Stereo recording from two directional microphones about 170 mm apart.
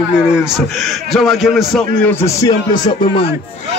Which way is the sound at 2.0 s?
15° left (ahead or behind).